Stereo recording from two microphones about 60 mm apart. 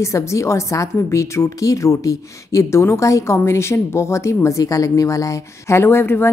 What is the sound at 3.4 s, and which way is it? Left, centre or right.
Speech, left.